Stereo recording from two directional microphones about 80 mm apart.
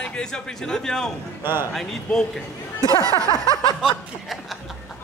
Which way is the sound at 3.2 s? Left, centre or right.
Left.